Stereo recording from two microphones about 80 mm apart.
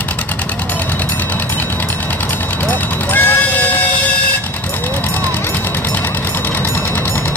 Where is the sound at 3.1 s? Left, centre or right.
Left.